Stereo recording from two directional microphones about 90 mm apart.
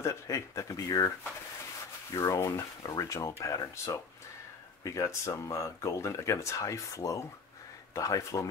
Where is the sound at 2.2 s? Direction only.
35° left (ahead or behind).